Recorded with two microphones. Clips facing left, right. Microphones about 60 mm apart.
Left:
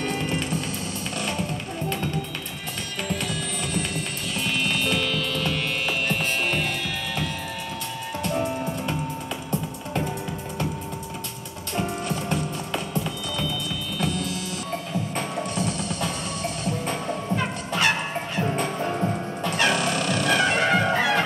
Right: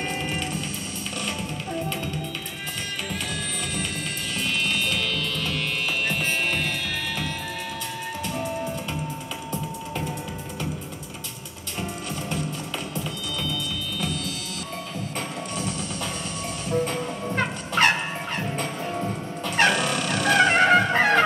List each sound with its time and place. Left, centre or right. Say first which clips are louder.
0.1 s music: left 2 dB; centre
3.1 s music: left 2 dB; centre
11.8 s music: left 3 dB; centre
17.4 s music: right 6 dB; right
19.7 s dog: left 1 dB; centre
20.5 s music: right 3 dB; right